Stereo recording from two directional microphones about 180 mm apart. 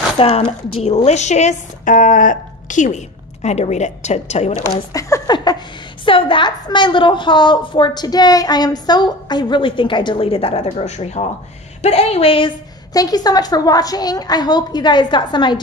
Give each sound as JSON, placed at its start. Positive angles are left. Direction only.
{"t": 0.2, "sound": "a woman's voice", "side_deg": 35}
{"t": 4.9, "sound": "a sound", "side_deg": 20}
{"t": 6.0, "sound": "a woman's voice", "side_deg": 30}